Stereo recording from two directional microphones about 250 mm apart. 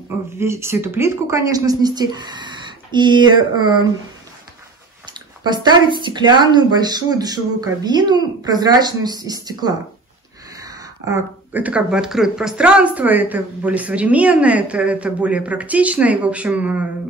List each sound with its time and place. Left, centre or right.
0.4 s speech: centre
5.0 s speech: centre